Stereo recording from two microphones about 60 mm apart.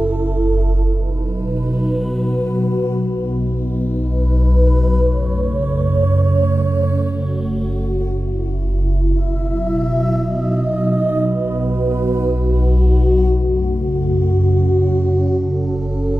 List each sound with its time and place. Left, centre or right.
0.0 s music: right
2.3 s music: left
4.6 s music: centre
5.9 s music: right
9.7 s music: centre
10.5 s music: right
11.8 s music: right
12.8 s music: centre
14.3 s singing bowl: left